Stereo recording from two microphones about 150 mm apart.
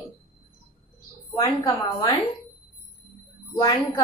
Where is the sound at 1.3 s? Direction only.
20° left (ahead or behind).